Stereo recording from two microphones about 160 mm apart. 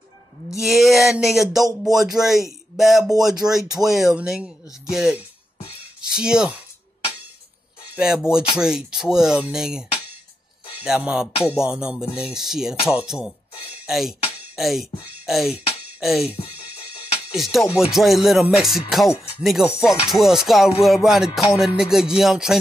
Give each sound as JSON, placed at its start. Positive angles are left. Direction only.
{"t": 0.5, "sound": "music", "side_deg": 0}
{"t": 7.9, "sound": "music", "side_deg": -5}
{"t": 16.3, "sound": "speech", "side_deg": 35}
{"t": 17.3, "sound": "music", "side_deg": 0}